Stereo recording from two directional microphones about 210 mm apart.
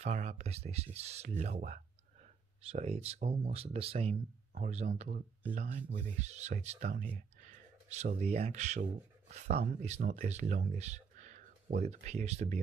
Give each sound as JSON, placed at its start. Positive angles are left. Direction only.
{"t": 0.0, "sound": "speech", "side_deg": -30}